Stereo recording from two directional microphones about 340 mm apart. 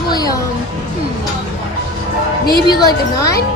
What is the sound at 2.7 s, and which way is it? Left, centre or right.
Speech, centre.